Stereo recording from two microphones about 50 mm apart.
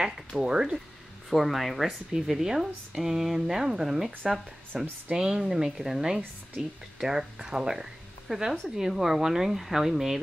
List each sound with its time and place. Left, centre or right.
0.4 s speech: centre
1.3 s speech: centre